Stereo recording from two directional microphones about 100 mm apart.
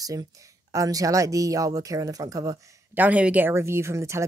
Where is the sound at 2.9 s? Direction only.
15° right (ahead or behind).